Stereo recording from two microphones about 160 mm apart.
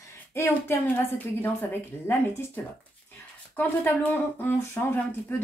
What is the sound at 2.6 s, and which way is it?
Speech, 15° left (ahead or behind).